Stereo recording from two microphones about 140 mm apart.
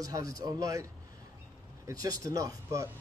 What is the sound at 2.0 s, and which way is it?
Speech, 25° right (ahead or behind).